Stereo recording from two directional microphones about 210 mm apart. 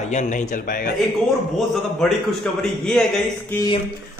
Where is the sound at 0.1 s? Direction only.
35° left (ahead or behind).